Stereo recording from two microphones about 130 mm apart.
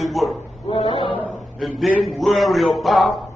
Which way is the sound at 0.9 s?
40° left (ahead or behind).